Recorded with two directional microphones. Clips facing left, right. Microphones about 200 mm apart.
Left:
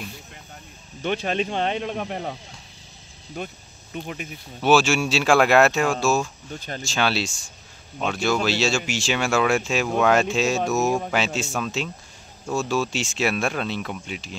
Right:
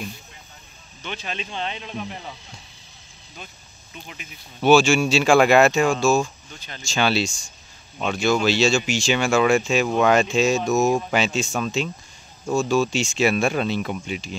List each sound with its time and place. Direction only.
1.0 s speech: 55° left (ahead or behind)
3.4 s speech: 50° left (ahead or behind)
4.6 s speech: 5° left (ahead or behind)
6.5 s speech: 45° left (ahead or behind)
6.8 s speech: 5° left (ahead or behind)